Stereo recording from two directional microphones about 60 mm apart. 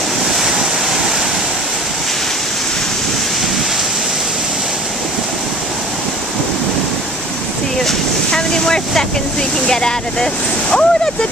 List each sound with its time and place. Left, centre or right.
0.4 s waves: centre
7.8 s vehicle: centre
9.7 s speech: centre